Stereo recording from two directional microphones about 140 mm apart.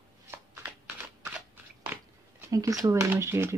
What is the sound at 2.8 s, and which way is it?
Speech, 25° right (ahead or behind).